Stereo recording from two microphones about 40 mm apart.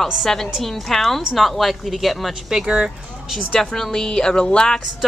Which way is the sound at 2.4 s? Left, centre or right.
Centre.